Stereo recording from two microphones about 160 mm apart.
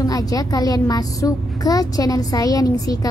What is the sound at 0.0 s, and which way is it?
A child's voice, 20° left (ahead or behind).